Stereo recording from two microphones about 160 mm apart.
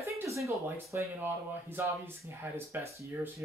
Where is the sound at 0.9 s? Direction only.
15° right (ahead or behind).